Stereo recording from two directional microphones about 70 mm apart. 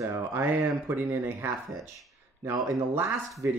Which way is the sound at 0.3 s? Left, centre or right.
Right.